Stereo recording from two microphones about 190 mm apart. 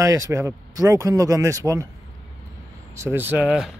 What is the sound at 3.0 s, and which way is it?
Speech, 10° right (ahead or behind).